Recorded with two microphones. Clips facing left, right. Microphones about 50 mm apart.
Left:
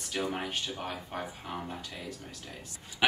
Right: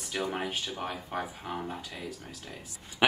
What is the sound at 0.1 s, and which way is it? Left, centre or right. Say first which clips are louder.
Speech: right 1 dB; centre.